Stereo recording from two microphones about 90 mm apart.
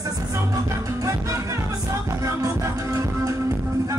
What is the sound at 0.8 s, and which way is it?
Music, 35° right (ahead or behind).